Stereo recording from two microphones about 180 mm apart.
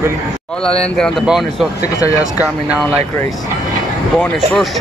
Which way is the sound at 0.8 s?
5° left (ahead or behind).